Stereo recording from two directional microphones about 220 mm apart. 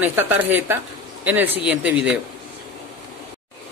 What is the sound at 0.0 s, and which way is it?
A man's voice, 10° right (ahead or behind).